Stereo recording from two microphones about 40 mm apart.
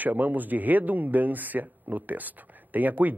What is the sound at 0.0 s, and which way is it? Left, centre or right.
Speech, right.